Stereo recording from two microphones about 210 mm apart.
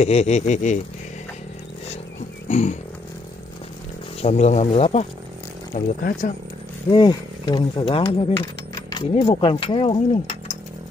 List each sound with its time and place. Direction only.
0.0 s speech: 30° left (ahead or behind)
2.4 s a sound: 35° left (ahead or behind)
4.2 s speech: 30° left (ahead or behind)
6.9 s speech: 20° left (ahead or behind)